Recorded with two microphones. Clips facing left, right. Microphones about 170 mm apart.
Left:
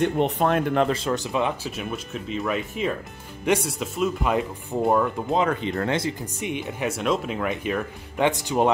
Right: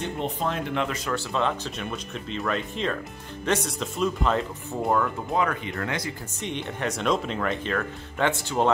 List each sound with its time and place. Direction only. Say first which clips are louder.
0.0 s speech: left 7 dB; 65° left (ahead or behind)
1.0 s speech: left 2 dB; 15° left (ahead or behind)
6.4 s speech: left 2 dB; 10° left (ahead or behind)